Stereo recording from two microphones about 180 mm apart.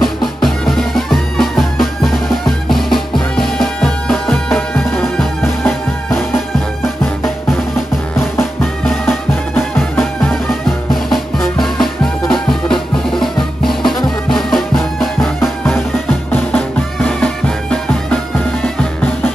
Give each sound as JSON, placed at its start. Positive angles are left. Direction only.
{"t": 0.0, "sound": "music", "side_deg": 0}
{"t": 8.2, "sound": "music", "side_deg": 15}
{"t": 9.8, "sound": "music", "side_deg": 0}
{"t": 16.3, "sound": "music", "side_deg": 10}